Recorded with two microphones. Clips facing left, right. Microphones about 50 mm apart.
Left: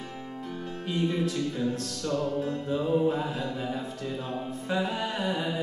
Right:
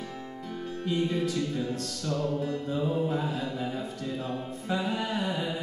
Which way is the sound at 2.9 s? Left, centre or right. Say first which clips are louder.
Left 6 dB; left.